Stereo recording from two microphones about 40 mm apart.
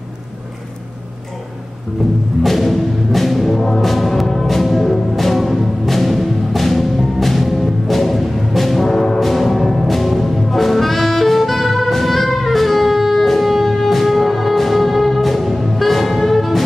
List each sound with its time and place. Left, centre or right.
2.4 s music: centre